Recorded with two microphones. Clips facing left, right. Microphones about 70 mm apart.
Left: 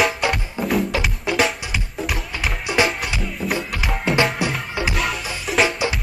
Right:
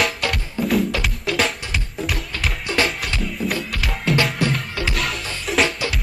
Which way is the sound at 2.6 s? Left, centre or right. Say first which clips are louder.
Left 2 dB; centre.